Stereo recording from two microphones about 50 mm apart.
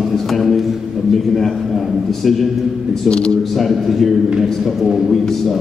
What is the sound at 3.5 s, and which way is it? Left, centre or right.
Speech, centre.